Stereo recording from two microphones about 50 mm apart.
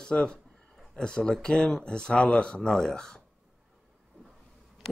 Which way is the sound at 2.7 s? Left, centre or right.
Centre.